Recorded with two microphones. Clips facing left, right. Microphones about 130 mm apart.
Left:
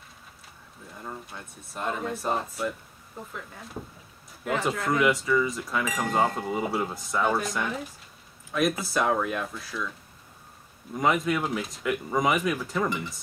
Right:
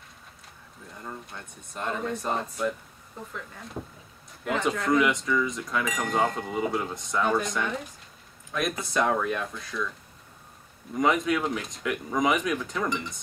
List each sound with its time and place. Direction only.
0.9 s speech: 5° left (ahead or behind)
4.6 s speech: 5° left (ahead or behind)
11.0 s speech: centre (ahead or behind)